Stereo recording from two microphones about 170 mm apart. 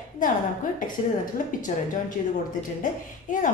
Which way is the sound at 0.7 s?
50° left (ahead or behind).